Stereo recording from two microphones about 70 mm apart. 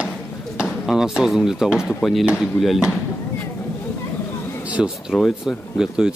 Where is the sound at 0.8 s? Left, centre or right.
Centre.